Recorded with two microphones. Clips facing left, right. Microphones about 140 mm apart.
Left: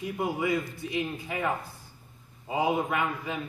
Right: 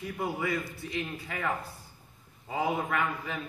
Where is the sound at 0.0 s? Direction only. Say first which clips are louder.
Left 3 dB; 20° left (ahead or behind).